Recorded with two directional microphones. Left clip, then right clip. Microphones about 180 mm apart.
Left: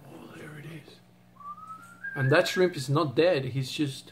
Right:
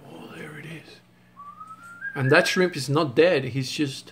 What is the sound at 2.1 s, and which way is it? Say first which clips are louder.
Speech: right 4 dB; 35° right (ahead or behind).